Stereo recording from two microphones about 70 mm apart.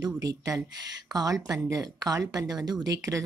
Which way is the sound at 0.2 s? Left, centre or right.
Right.